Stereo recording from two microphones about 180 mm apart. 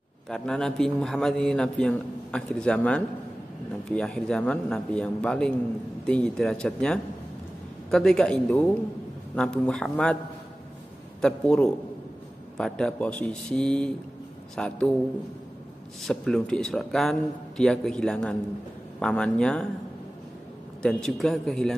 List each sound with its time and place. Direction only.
0.3 s a man's voice: 5° left (ahead or behind)
11.1 s a man's voice: 5° left (ahead or behind)
16.0 s a man's voice: 5° left (ahead or behind)
20.8 s a man's voice: centre (ahead or behind)